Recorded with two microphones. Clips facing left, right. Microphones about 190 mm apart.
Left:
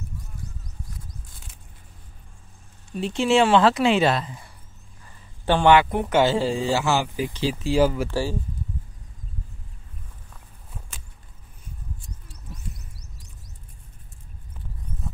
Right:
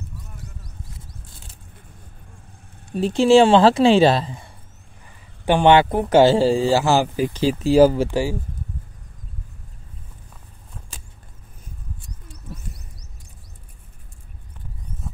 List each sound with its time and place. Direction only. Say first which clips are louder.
2.9 s speech: right 7 dB; 35° right (ahead or behind)
5.4 s speech: right 3 dB; 15° right (ahead or behind)
5.7 s speech: right 3 dB; 30° right (ahead or behind)
8.1 s speech: right 4 dB; 15° right (ahead or behind)